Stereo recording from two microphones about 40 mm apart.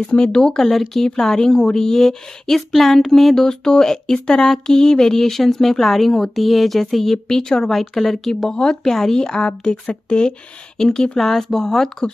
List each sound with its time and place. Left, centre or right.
0.2 s speech: centre
0.7 s speech: centre
3.4 s speech: centre